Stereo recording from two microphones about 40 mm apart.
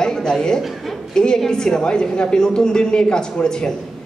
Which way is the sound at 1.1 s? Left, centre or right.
Centre.